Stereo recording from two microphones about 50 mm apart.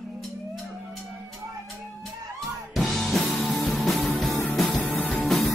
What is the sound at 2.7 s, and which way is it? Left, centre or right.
Music, centre.